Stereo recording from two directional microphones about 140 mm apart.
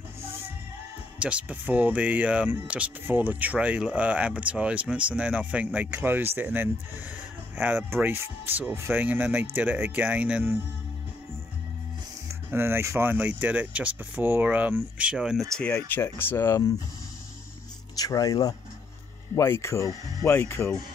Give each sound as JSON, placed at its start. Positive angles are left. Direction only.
{"t": 1.2, "sound": "speech", "side_deg": -10}
{"t": 12.3, "sound": "speech", "side_deg": -15}
{"t": 15.9, "sound": "speech", "side_deg": 15}
{"t": 17.9, "sound": "speech", "side_deg": 25}